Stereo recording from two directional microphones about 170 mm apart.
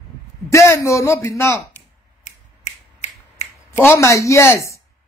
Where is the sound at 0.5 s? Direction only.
15° left (ahead or behind).